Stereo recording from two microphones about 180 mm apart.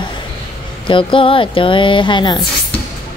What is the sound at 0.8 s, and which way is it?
Speech, 30° left (ahead or behind).